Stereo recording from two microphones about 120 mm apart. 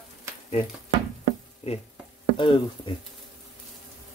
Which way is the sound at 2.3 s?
40° left (ahead or behind).